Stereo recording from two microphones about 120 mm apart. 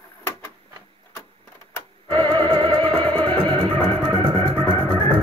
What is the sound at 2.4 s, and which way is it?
Music, 40° right (ahead or behind).